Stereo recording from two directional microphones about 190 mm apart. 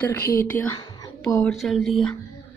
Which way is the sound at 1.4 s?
Centre (ahead or behind).